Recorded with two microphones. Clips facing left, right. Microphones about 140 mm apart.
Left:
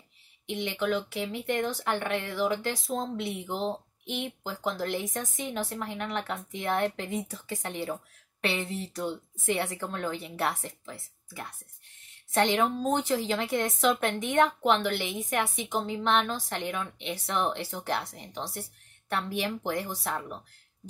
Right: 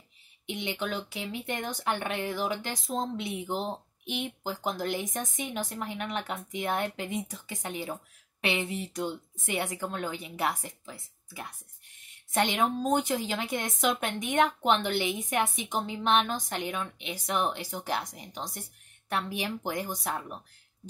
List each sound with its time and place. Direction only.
0.5 s speech: 20° right (ahead or behind)
2.0 s a woman's voice: 20° right (ahead or behind)
12.4 s a woman's voice: 15° right (ahead or behind)